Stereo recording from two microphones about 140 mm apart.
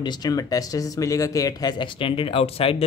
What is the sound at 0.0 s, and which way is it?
Speech, 30° left (ahead or behind).